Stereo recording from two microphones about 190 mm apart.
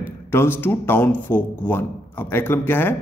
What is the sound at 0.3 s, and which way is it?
A man's voice, 10° left (ahead or behind).